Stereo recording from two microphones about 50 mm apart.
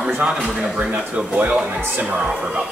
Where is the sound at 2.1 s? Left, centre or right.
Centre.